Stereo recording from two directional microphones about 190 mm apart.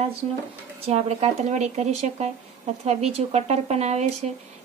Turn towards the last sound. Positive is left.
turn(degrees=-35)  # may be behind; listen again after turning